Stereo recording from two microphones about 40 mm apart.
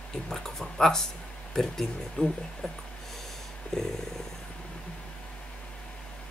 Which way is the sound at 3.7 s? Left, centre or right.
Centre.